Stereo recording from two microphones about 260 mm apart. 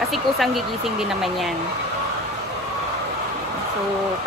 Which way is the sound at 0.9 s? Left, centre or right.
Centre.